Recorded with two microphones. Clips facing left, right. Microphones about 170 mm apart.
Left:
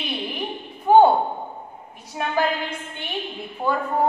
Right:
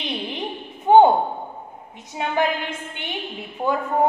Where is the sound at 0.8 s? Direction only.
20° right (ahead or behind).